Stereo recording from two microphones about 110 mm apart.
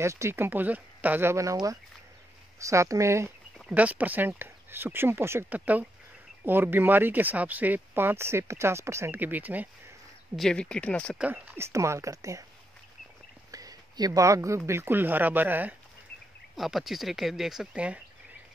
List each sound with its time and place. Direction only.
0.0 s speech: 25° right (ahead or behind)
3.7 s speech: 15° right (ahead or behind)
10.3 s speech: 5° left (ahead or behind)
11.1 s speech: 10° right (ahead or behind)
11.5 s speech: 25° right (ahead or behind)
13.5 s a sound: 35° right (ahead or behind)
14.7 s speech: 20° right (ahead or behind)
16.5 s speech: centre (ahead or behind)